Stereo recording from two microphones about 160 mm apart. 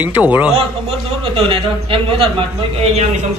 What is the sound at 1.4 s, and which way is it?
Speech, 35° right (ahead or behind).